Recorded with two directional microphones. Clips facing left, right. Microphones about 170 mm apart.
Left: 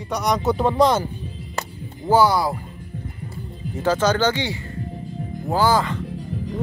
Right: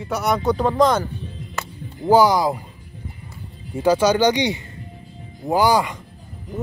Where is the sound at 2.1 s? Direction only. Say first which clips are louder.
Right 2 dB; 15° right (ahead or behind).